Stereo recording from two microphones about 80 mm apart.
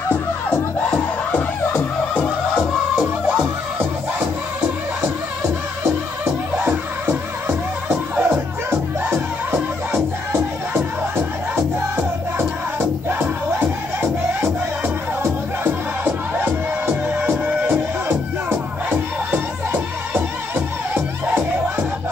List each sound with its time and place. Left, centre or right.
0.1 s music: centre
1.7 s music: centre
3.0 s music: centre
6.5 s music: right
15.2 s music: right